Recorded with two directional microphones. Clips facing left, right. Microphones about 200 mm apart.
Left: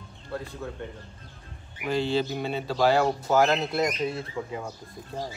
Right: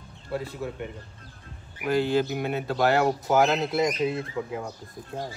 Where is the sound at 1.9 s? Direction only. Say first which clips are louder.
Right 2 dB; 10° right (ahead or behind).